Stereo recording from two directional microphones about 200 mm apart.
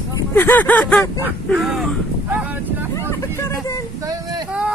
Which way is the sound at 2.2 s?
10° right (ahead or behind).